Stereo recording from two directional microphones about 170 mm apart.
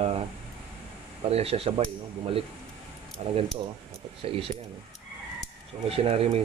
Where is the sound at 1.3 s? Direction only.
35° right (ahead or behind).